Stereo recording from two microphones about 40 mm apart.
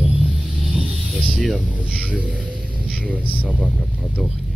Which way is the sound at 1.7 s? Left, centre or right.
Right.